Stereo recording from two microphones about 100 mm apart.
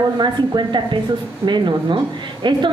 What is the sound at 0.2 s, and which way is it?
A woman's voice, 50° right (ahead or behind).